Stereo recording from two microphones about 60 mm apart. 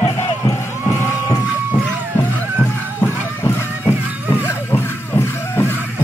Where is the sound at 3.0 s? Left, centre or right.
Left.